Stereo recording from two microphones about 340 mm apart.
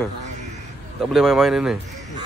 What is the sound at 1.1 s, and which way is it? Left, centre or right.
Speech, centre.